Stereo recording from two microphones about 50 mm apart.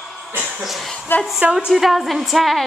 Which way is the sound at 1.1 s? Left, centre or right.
Left.